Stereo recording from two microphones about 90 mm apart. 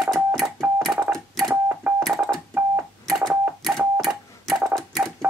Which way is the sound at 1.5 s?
20° right (ahead or behind).